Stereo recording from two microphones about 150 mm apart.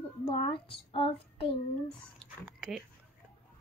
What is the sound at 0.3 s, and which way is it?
Child singing, 35° left (ahead or behind).